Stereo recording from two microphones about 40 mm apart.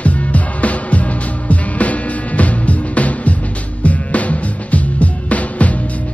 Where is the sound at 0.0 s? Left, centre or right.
Left.